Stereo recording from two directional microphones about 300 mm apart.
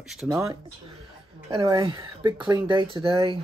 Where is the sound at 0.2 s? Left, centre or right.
Centre.